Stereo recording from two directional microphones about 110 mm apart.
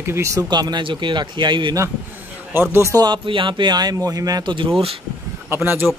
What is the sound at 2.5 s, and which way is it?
Speech, 20° right (ahead or behind).